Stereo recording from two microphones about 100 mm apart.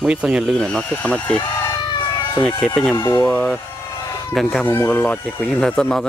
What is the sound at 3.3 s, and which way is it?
Speech, 15° left (ahead or behind).